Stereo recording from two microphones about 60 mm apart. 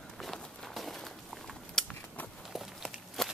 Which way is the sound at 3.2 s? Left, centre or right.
Centre.